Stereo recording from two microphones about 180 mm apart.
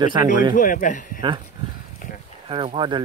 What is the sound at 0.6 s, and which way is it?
Speech, 45° left (ahead or behind).